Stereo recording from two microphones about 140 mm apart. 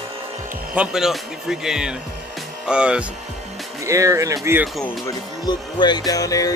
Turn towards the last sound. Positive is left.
turn(degrees=25)  # may be behind; listen again after turning